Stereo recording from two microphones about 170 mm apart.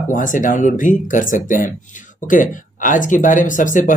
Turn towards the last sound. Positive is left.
turn(degrees=50)  # may be behind; listen again after turning